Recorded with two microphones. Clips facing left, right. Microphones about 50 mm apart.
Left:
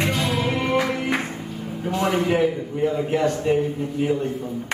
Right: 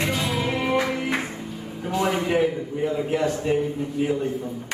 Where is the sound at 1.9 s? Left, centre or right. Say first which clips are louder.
Left 2 dB; centre.